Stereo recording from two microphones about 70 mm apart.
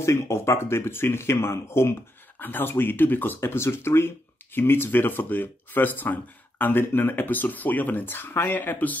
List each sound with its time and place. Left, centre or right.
0.0 s speech: left
3.3 s speech: left